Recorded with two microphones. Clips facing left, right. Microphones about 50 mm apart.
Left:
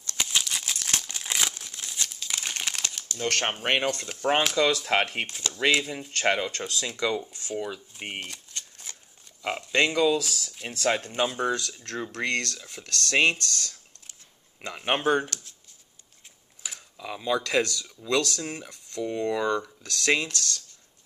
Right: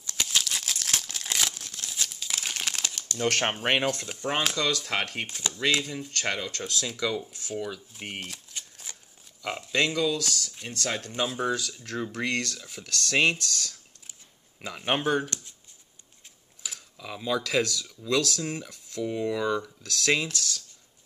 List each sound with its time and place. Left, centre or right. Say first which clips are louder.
0.2 s crumpling: even; centre
3.2 s speech: right 1 dB; centre
4.6 s speech: left 5 dB; centre
5.2 s speech: left 1 dB; centre
5.8 s speech: left 2 dB; centre
7.5 s speech: left 1 dB; centre
8.2 s typewriter: left 1 dB; centre
9.4 s speech: left 2 dB; centre
11.2 s speech: left 1 dB; centre
15.2 s speech: right 1 dB; right
16.6 s speech: left 2 dB; centre